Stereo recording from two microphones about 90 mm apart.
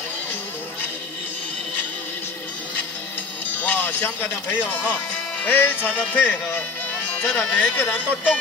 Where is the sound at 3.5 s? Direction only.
20° left (ahead or behind).